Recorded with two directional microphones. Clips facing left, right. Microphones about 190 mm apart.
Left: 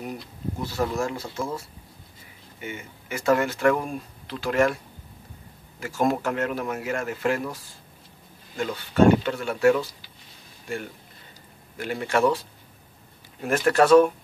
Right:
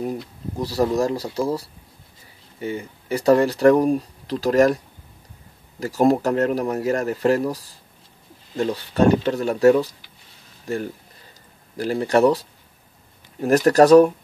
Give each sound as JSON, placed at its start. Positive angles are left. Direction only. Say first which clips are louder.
{"t": 0.0, "sound": "speech", "louder": "right 5 dB", "side_deg": -35}
{"t": 5.8, "sound": "speech", "louder": "right 6 dB", "side_deg": -35}